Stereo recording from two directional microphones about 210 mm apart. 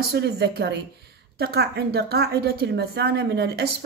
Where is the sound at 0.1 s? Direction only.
55° right (ahead or behind).